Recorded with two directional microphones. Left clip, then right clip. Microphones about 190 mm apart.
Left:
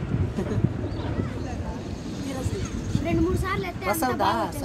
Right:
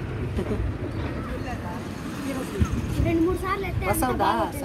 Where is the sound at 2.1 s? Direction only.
45° right (ahead or behind).